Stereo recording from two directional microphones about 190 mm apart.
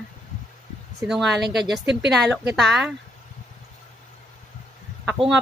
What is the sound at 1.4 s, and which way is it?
Speech, 65° right (ahead or behind).